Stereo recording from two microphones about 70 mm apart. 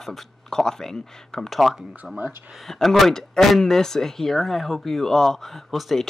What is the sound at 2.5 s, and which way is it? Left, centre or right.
Speech, centre.